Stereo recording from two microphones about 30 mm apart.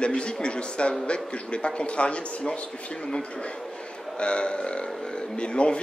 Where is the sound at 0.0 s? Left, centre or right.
Left.